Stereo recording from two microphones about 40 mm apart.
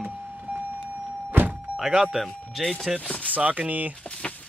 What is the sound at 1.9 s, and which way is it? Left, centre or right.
Speech, centre.